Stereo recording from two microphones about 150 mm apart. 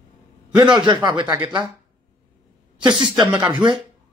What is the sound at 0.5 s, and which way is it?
Speech, 30° right (ahead or behind).